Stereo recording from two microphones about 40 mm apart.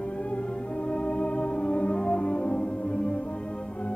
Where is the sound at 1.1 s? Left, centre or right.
Left.